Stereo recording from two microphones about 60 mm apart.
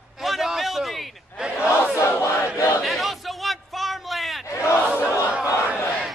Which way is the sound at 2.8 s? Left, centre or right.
Centre.